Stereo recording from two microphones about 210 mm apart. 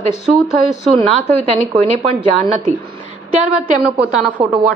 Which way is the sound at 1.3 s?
30° right (ahead or behind).